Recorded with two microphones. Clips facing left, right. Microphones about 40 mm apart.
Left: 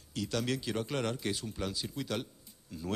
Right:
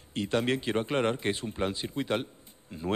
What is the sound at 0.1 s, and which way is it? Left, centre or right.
Speech, right.